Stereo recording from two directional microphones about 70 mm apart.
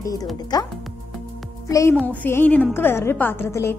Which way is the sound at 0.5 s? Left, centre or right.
Left.